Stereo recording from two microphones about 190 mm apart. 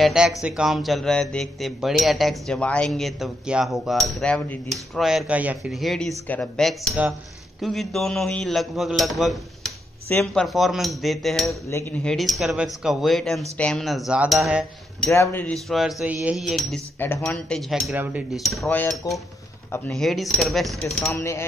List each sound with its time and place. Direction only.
0.0 s speech: centre (ahead or behind)
15.0 s speech: 10° left (ahead or behind)
17.0 s speech: 10° left (ahead or behind)
19.1 s speech: 15° left (ahead or behind)
19.9 s speech: centre (ahead or behind)
21.1 s speech: 15° left (ahead or behind)